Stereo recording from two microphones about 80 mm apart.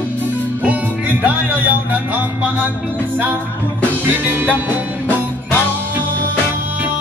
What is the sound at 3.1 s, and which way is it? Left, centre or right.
Music, right.